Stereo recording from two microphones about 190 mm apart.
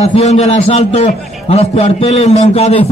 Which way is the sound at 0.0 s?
35° left (ahead or behind).